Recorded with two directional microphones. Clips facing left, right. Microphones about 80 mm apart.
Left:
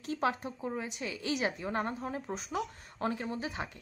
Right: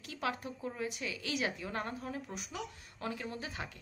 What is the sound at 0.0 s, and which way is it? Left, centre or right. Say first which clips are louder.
Speech: left 6 dB; left.